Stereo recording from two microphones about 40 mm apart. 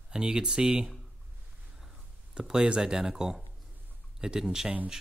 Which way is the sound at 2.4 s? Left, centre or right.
Right.